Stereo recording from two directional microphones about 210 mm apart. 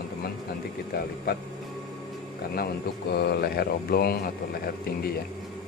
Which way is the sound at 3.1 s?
50° left (ahead or behind).